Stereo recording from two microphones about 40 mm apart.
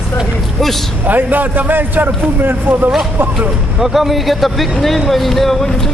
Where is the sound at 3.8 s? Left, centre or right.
Centre.